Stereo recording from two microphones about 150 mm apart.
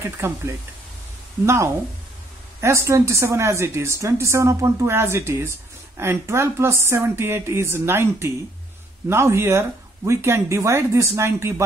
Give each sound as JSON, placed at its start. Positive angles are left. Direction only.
{"t": 0.2, "sound": "a woman's voice", "side_deg": -15}
{"t": 1.4, "sound": "a woman's voice", "side_deg": -20}